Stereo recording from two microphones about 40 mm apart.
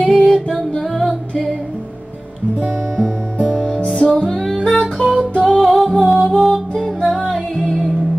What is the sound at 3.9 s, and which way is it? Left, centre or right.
Music, centre.